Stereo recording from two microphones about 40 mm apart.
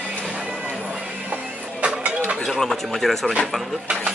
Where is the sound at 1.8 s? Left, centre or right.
Right.